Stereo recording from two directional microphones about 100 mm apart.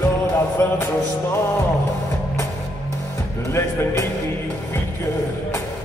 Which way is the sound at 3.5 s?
30° left (ahead or behind).